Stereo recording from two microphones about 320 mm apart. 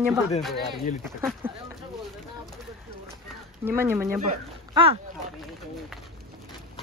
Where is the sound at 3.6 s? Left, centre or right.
Centre.